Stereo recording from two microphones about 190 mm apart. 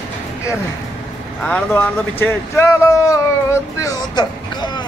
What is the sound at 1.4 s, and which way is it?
A man's voice, 5° left (ahead or behind).